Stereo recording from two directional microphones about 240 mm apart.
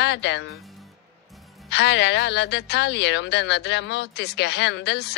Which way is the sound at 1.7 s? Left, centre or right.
Left.